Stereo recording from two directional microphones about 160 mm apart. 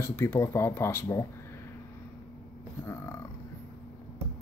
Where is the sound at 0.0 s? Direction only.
15° left (ahead or behind).